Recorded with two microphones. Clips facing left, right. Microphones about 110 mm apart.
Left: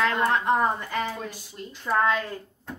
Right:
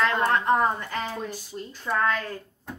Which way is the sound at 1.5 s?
30° right (ahead or behind).